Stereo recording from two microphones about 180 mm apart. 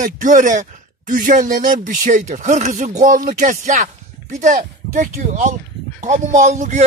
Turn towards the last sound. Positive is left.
turn(degrees=-40)  # may be behind; listen again after turning